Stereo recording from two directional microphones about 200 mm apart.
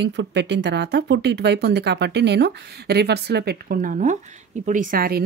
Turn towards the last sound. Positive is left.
turn(degrees=-45)  # may be behind; listen again after turning